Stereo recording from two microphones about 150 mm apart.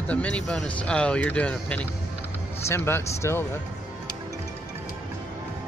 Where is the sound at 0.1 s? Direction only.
10° left (ahead or behind).